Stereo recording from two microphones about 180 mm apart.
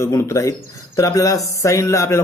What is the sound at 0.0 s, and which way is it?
Speech, 15° left (ahead or behind).